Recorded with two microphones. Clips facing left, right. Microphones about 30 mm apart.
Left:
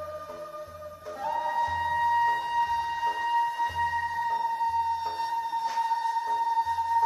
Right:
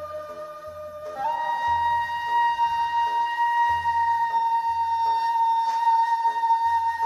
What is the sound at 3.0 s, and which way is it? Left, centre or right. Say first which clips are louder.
Music: right 4 dB; centre.